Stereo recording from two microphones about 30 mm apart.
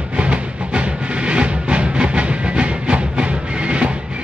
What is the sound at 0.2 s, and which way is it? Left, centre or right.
Music, right.